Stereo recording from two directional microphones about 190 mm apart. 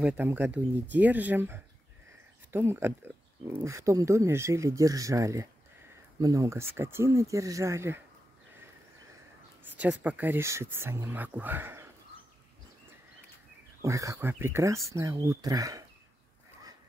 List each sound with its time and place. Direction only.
0.0 s speech: 10° right (ahead or behind)
9.7 s speech: 5° right (ahead or behind)
13.8 s speech: 15° right (ahead or behind)